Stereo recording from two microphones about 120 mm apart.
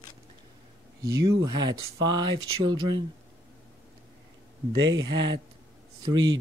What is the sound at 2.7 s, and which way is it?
Speech, 40° right (ahead or behind).